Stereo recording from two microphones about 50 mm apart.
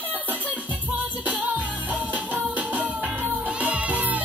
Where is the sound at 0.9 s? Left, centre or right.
Right.